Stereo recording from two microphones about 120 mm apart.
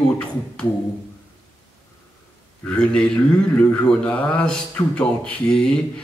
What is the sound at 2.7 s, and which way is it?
Mantra, 10° left (ahead or behind).